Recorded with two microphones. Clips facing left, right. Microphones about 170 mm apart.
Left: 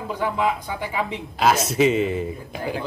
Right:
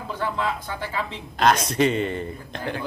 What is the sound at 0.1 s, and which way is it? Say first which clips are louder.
Speech: left 4 dB; 15° left (ahead or behind).